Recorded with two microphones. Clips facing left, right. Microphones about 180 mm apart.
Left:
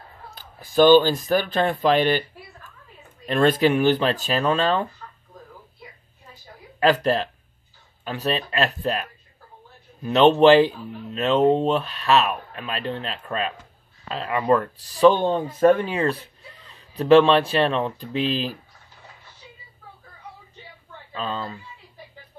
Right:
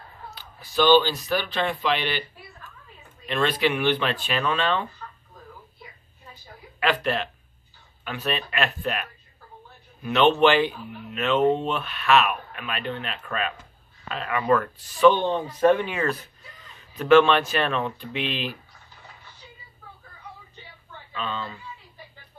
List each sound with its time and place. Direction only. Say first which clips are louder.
0.3 s speech: left 2 dB; 50° left (ahead or behind)
3.3 s speech: left 5 dB; 45° left (ahead or behind)
6.8 s speech: left 5 dB; 40° left (ahead or behind)
21.1 s speech: left 3 dB; 35° left (ahead or behind)